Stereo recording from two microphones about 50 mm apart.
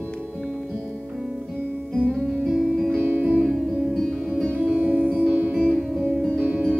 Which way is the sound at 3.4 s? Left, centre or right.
Centre.